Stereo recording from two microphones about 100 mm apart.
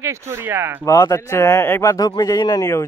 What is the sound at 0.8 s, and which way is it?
Speech, 35° left (ahead or behind).